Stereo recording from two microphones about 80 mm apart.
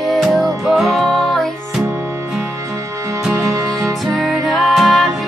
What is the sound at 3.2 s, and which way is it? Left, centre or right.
Music, centre.